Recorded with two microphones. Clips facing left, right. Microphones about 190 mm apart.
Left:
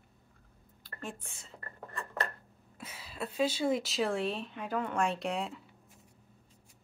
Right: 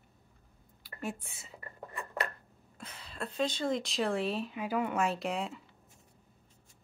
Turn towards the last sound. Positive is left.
turn(degrees=0)  # may be behind; listen again after turning